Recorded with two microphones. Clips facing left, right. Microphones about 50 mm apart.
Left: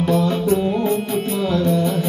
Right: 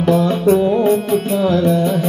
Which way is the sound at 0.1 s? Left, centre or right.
Right.